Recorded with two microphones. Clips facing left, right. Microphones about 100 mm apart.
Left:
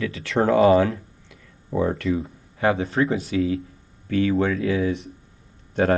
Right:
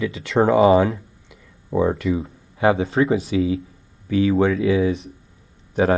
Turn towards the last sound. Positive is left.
turn(degrees=-10)  # may be behind; listen again after turning